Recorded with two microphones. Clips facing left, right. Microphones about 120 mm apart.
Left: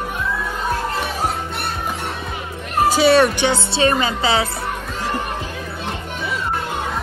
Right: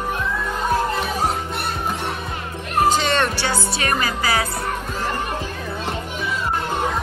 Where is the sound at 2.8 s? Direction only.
10° left (ahead or behind).